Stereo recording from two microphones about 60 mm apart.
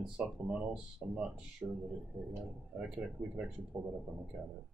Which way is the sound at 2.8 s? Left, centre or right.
Centre.